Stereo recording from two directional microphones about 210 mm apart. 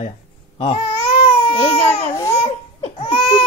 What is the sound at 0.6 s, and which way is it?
Babbling, 25° left (ahead or behind).